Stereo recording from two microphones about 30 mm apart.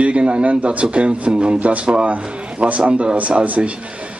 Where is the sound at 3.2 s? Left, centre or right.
Right.